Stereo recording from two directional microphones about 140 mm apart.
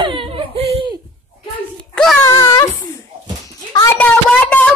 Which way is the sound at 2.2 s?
20° left (ahead or behind).